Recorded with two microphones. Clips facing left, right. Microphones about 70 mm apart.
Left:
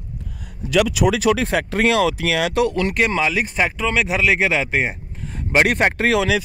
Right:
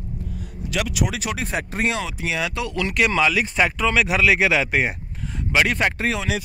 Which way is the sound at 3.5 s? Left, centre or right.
Centre.